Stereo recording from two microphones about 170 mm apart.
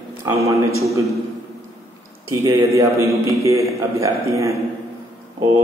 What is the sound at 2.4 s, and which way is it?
A man's voice, 20° right (ahead or behind).